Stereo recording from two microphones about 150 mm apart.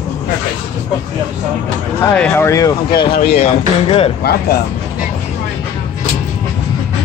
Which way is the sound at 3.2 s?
45° left (ahead or behind).